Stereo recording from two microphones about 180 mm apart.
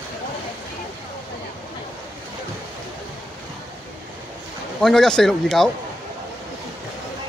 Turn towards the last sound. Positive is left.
turn(degrees=0)  # may be behind; listen again after turning